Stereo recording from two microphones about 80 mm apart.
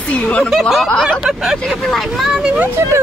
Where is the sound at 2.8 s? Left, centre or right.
Right.